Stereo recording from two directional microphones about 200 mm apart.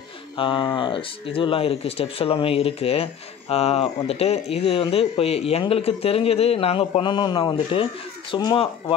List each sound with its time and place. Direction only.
0.4 s speech: 25° left (ahead or behind)